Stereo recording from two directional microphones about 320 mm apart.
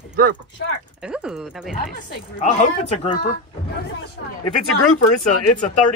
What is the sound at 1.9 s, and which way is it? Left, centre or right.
Speech, left.